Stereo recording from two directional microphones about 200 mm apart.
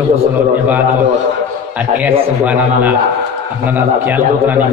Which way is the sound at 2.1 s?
10° right (ahead or behind).